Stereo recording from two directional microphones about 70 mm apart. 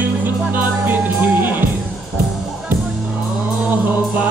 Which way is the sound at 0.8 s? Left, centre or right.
Right.